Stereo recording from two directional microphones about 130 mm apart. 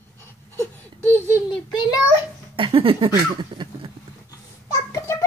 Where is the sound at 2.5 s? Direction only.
40° right (ahead or behind).